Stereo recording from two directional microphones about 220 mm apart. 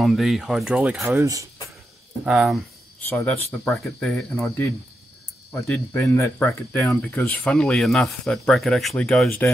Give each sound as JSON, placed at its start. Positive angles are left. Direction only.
{"t": 0.0, "sound": "speech", "side_deg": 0}
{"t": 1.2, "sound": "speech", "side_deg": -15}
{"t": 2.2, "sound": "speech", "side_deg": 0}
{"t": 3.1, "sound": "speech", "side_deg": 10}